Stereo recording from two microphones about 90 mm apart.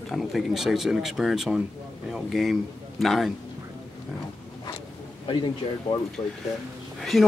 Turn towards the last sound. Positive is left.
turn(degrees=0)  # may be behind; listen again after turning